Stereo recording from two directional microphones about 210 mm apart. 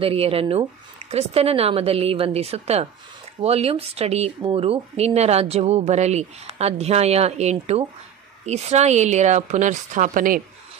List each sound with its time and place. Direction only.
0.0 s a woman's voice: 25° right (ahead or behind)